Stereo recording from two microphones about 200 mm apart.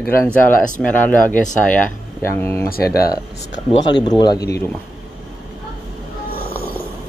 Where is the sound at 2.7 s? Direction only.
50° left (ahead or behind).